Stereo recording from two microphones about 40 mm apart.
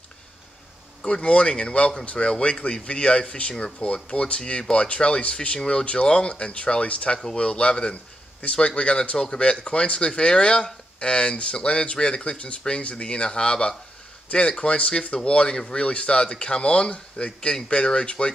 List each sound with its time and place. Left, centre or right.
1.0 s speech: left